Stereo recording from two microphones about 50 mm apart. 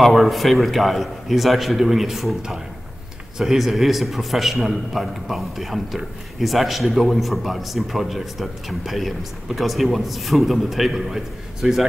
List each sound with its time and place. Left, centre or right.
0.0 s a man's voice: centre
3.3 s a man's voice: centre